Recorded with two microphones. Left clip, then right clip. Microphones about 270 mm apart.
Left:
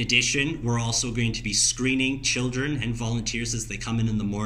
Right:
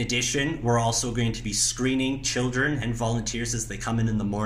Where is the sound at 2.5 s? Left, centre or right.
Centre.